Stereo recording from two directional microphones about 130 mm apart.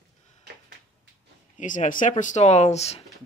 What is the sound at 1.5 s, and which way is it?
Speech, 80° left.